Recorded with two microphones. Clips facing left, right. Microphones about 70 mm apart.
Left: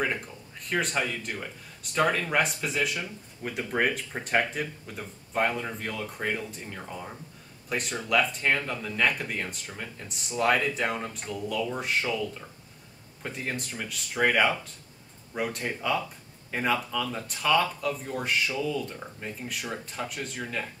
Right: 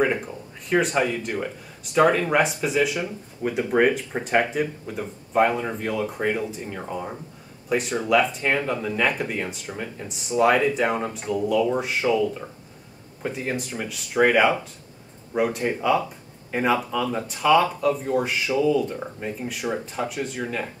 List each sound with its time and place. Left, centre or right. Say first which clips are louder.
0.0 s speech: right 7 dB; centre
6.8 s speech: right 8 dB; right
7.7 s speech: right 6 dB; centre
17.3 s speech: right 6 dB; centre
19.4 s speech: right 8 dB; centre
20.4 s speech: right 5 dB; centre